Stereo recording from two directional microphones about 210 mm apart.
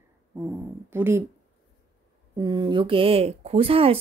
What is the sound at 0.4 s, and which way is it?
Speech, 10° right (ahead or behind).